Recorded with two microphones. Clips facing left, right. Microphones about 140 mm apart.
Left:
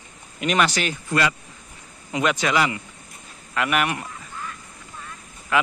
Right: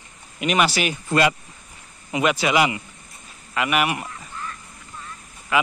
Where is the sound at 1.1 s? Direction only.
20° right (ahead or behind).